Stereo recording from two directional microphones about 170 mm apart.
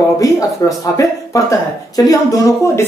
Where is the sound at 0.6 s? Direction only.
15° left (ahead or behind).